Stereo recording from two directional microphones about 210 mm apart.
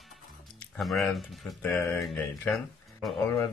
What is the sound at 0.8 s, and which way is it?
Speech, centre (ahead or behind).